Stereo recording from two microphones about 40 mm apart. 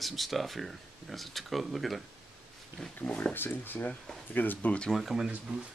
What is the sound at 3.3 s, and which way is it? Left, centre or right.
Speech, left.